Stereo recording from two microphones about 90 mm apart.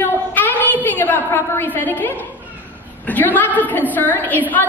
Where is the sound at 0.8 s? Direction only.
20° left (ahead or behind).